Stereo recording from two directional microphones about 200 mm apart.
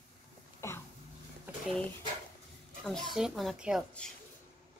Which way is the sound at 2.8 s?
Centre (ahead or behind).